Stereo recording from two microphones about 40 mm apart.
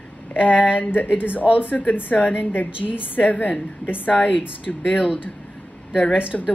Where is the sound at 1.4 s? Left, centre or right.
Right.